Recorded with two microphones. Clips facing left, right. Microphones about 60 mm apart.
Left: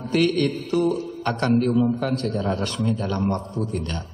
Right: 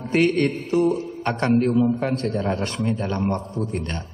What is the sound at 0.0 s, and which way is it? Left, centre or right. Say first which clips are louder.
A man's voice: right 1 dB; right.